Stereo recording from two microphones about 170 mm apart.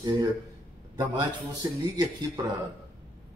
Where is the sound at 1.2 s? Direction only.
20° right (ahead or behind).